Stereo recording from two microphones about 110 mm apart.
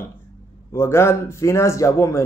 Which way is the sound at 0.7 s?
25° left (ahead or behind).